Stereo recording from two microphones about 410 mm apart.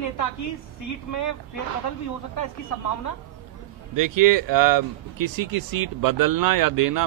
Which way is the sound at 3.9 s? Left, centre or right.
Right.